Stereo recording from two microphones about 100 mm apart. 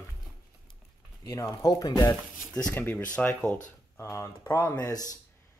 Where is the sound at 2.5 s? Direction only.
15° left (ahead or behind).